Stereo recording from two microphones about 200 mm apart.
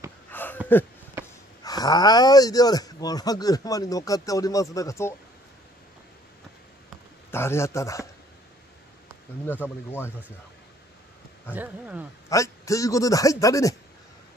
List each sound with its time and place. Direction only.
0.3 s a sound: 10° left (ahead or behind)
1.2 s a sound: 10° right (ahead or behind)
1.6 s a man's voice: 20° left (ahead or behind)
7.2 s a man's voice: 10° left (ahead or behind)
9.5 s a man's voice: 10° left (ahead or behind)
11.5 s speech: 10° right (ahead or behind)
12.3 s a man's voice: 15° left (ahead or behind)